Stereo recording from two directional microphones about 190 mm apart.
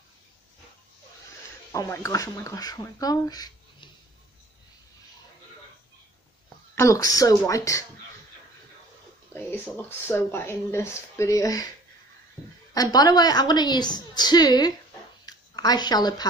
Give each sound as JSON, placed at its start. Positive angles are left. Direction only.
{"t": 1.7, "sound": "speech", "side_deg": 15}
{"t": 6.7, "sound": "speech", "side_deg": 15}
{"t": 9.3, "sound": "a woman's voice", "side_deg": 10}
{"t": 15.2, "sound": "a sound", "side_deg": 20}